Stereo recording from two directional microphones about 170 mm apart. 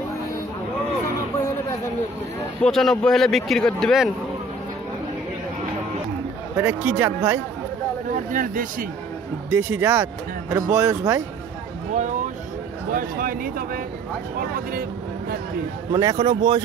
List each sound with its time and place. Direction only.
2.6 s a man's voice: centre (ahead or behind)
6.5 s speech: 15° right (ahead or behind)
8.1 s speech: 55° right (ahead or behind)
9.5 s speech: 15° right (ahead or behind)
11.9 s speech: 50° right (ahead or behind)
15.9 s speech: 20° right (ahead or behind)